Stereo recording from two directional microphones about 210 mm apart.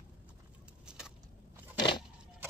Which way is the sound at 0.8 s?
5° right (ahead or behind).